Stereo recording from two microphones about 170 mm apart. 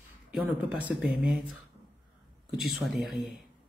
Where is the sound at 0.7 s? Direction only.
10° right (ahead or behind).